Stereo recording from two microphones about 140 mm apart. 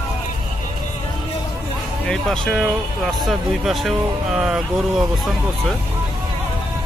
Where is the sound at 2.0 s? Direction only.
5° left (ahead or behind).